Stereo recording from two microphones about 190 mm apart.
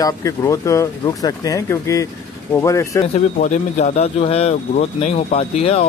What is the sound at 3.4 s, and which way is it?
Speech, 40° left (ahead or behind).